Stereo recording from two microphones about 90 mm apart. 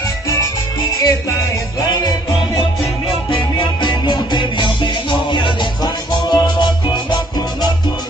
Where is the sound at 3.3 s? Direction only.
65° left (ahead or behind).